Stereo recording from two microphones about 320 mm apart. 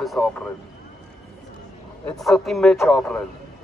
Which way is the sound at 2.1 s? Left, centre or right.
Centre.